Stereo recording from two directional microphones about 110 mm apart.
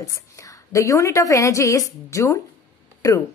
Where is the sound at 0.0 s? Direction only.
30° left (ahead or behind).